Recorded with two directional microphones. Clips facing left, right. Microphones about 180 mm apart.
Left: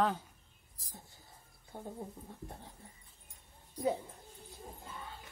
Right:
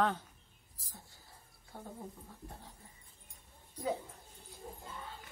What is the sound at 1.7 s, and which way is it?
Speech, 20° left (ahead or behind).